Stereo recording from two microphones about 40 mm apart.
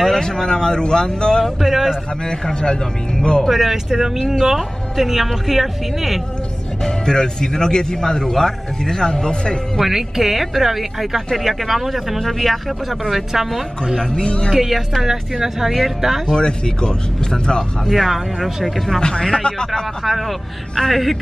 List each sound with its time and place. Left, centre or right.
0.2 s speech: centre
1.4 s a woman's voice: centre
2.2 s speech: centre
3.4 s speech: centre
6.8 s speech: centre
9.8 s a woman's voice: centre
14.1 s speech: left
14.5 s a woman's voice: centre
16.3 s speech: left
17.8 s speech: centre
18.9 s speech: centre
20.0 s speech: centre